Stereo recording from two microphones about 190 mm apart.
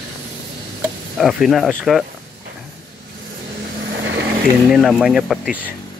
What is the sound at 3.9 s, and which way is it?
Vehicle, 65° right (ahead or behind).